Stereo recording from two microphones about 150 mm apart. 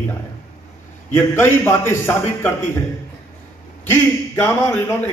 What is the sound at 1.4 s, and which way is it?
A man's voice, 15° left (ahead or behind).